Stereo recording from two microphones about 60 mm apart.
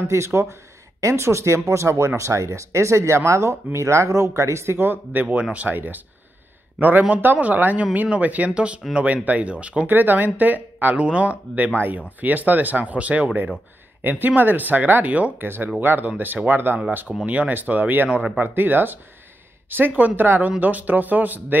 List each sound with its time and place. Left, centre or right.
0.1 s speech: right
4.7 s speech: right
9.8 s speech: right
15.3 s speech: right